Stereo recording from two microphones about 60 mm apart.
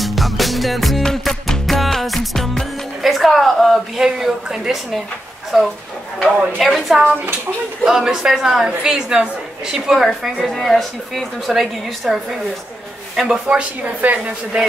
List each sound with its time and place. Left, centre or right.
0.0 s music: centre
3.0 s a woman's voice: centre
7.8 s speech: centre
10.4 s a woman's voice: centre; by 14.6 s right